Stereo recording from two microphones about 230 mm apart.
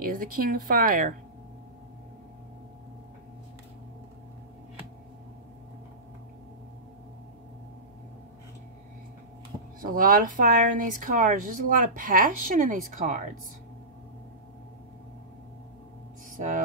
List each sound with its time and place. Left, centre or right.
0.0 s speech: right
9.8 s speech: right
16.3 s speech: right